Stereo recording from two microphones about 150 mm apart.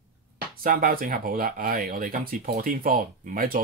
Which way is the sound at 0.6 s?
70° right (ahead or behind).